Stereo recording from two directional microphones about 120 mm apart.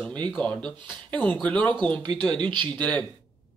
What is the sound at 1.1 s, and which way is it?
Speech, 10° left (ahead or behind).